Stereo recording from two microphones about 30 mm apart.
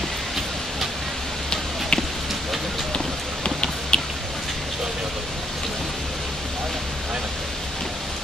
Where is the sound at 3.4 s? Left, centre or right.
Left.